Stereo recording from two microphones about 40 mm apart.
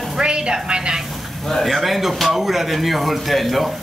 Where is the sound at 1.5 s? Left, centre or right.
Centre.